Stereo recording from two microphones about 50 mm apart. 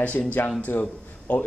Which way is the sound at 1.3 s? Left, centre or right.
Left.